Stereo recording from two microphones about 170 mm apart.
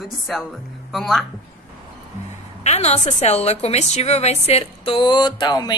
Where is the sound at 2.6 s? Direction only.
40° left (ahead or behind).